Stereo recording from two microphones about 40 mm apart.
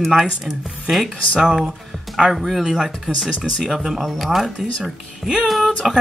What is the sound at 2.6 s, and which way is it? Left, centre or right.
Speech, centre.